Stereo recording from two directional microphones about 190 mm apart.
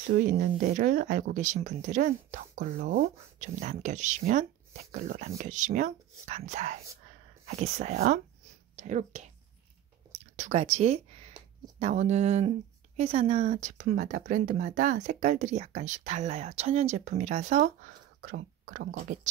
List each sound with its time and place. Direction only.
0.0 s speech: 45° right (ahead or behind)